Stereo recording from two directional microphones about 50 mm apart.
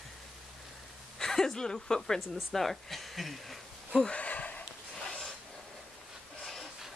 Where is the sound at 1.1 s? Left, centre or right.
Centre.